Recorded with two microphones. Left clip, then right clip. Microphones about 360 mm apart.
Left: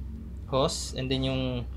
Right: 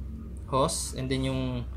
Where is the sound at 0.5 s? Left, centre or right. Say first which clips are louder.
Even; centre.